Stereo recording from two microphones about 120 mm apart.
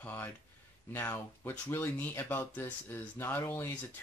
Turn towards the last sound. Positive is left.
turn(degrees=20)  # may be behind; listen again after turning